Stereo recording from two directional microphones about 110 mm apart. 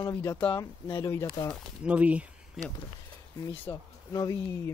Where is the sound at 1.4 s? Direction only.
50° left (ahead or behind).